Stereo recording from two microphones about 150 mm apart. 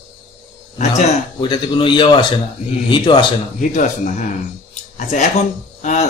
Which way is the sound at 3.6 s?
55° left (ahead or behind).